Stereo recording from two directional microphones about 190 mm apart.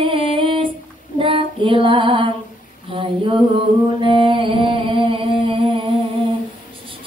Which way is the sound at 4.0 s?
25° right (ahead or behind).